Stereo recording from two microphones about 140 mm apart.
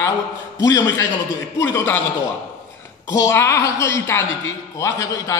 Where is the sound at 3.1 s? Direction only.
20° left (ahead or behind).